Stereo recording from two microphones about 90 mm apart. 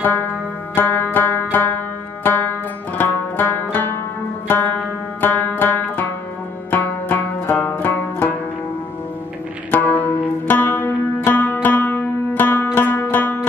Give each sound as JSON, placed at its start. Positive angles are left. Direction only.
{"t": 0.0, "sound": "music", "side_deg": 20}
{"t": 9.7, "sound": "zither", "side_deg": 20}
{"t": 12.7, "sound": "music", "side_deg": 20}